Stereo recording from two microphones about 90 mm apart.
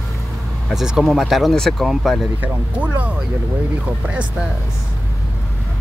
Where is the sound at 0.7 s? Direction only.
5° right (ahead or behind).